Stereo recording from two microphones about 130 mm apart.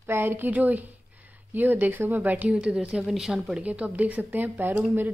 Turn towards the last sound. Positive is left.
turn(degrees=-15)  # may be behind; listen again after turning